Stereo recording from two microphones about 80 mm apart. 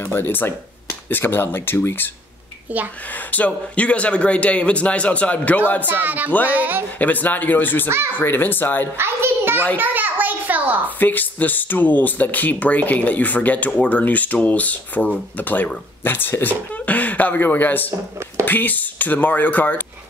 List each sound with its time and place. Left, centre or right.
0.1 s speech: left
3.3 s a man's voice: centre
5.8 s speech: right
7.0 s speech: left
8.9 s a sound: right
11.0 s speech: left